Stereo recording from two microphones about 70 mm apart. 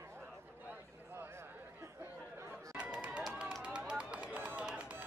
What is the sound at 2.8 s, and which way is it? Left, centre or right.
Run, centre.